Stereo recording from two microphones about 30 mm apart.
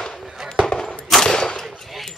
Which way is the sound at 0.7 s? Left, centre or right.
Left.